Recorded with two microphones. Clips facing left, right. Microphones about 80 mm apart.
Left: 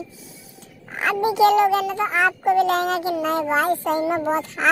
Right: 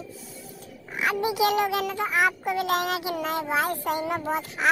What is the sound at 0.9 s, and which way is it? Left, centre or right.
Speech, left.